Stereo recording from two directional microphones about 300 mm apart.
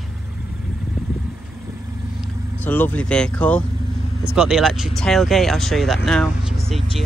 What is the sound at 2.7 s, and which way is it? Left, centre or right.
Speech, centre.